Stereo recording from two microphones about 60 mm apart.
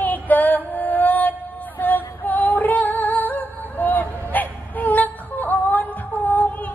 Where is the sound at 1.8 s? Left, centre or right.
Left.